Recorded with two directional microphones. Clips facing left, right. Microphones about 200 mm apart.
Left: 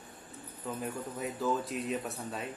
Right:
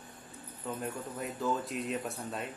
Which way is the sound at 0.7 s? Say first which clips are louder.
Left 1 dB; centre (ahead or behind).